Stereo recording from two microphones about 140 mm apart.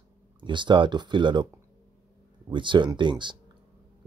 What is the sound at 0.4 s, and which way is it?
Speech, 35° right (ahead or behind).